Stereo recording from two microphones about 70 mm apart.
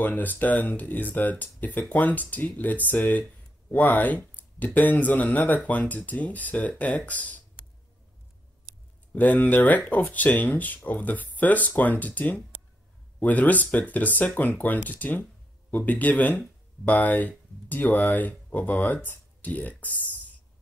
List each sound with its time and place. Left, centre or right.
0.0 s speech: left
9.1 s speech: left